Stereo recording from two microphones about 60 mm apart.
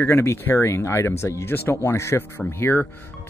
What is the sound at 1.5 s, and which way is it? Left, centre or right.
Speech, left.